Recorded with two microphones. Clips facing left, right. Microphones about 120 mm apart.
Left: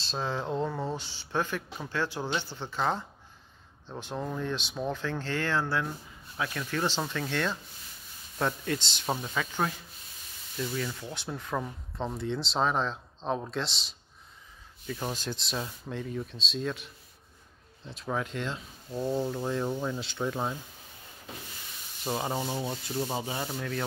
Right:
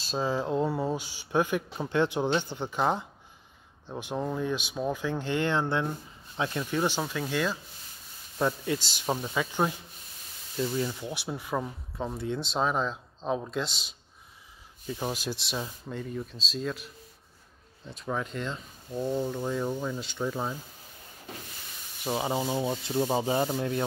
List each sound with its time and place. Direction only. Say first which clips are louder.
0.0 s speech: right 4 dB; 5° right (ahead or behind)
15.0 s speech: right 3 dB; 10° right (ahead or behind)
22.2 s sanding: right 6 dB; 15° right (ahead or behind)